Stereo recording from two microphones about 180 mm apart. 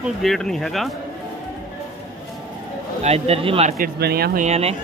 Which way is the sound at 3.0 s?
35° right (ahead or behind).